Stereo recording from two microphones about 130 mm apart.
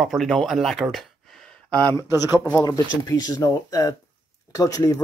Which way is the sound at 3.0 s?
30° left (ahead or behind).